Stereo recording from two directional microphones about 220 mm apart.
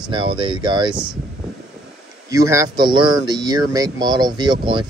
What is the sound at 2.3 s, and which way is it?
Speech, 15° right (ahead or behind).